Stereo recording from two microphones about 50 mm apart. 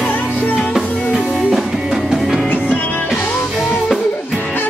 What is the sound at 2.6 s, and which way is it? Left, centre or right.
Music, left.